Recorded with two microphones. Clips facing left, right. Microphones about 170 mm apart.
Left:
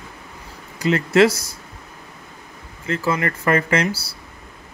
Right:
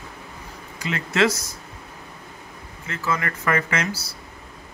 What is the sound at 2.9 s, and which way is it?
Speech, 30° left (ahead or behind).